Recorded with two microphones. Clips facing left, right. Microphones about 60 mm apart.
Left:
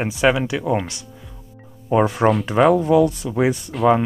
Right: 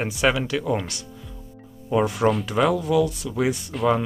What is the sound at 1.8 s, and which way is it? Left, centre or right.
Speech, left.